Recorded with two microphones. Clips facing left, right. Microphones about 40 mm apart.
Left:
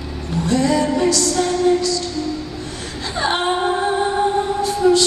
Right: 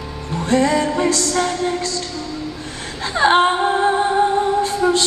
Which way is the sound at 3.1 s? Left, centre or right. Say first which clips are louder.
Right 6 dB; right.